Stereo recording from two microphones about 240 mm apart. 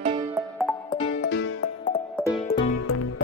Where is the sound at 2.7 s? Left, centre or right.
Left.